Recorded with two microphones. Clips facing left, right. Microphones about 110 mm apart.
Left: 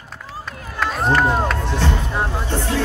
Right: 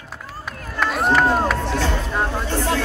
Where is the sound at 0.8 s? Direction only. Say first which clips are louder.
Even; 5° right (ahead or behind).